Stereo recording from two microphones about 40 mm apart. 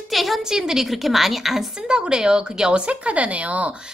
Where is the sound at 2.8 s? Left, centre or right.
Right.